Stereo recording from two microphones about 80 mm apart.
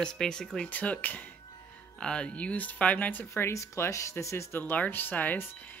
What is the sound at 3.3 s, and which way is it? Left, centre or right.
Speech, left.